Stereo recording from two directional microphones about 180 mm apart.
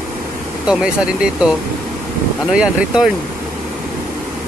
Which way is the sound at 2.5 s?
5° right (ahead or behind).